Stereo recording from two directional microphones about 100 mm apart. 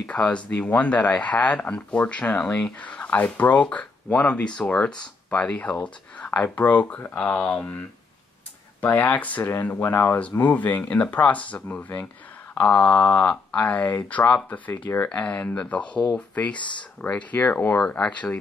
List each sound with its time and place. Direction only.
0.1 s speech: 10° left (ahead or behind)
8.8 s speech: 15° left (ahead or behind)